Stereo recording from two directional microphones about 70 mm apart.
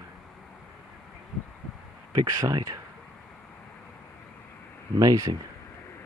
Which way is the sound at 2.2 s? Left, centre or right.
Right.